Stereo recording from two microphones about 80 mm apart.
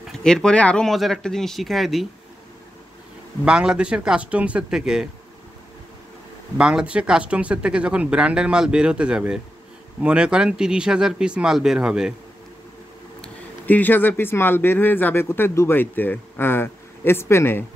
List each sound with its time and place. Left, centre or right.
0.2 s speech: centre
0.8 s speech: centre
3.4 s speech: centre
6.6 s speech: centre
13.7 s speech: left